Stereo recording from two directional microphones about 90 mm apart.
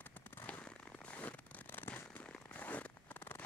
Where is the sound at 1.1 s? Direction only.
15° left (ahead or behind).